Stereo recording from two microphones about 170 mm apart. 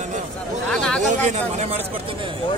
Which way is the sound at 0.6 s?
5° left (ahead or behind).